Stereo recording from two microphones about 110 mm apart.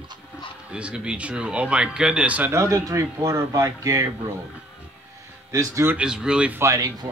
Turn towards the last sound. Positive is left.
turn(degrees=-30)  # may be behind; listen again after turning